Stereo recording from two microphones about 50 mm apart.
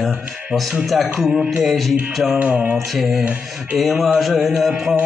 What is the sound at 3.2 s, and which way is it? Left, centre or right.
Music, right.